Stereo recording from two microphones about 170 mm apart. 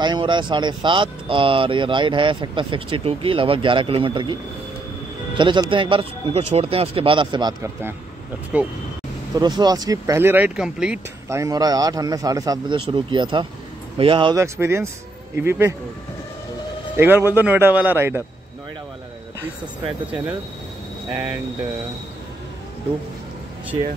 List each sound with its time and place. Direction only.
0.0 s speech: 25° right (ahead or behind)
5.4 s speech: 30° right (ahead or behind)
8.5 s speech: 5° right (ahead or behind)
9.4 s speech: 25° right (ahead or behind); by 11.0 s 5° right (ahead or behind)
11.2 s speech: 20° right (ahead or behind)
14.3 s speech: 15° right (ahead or behind)
16.9 s speech: 15° right (ahead or behind)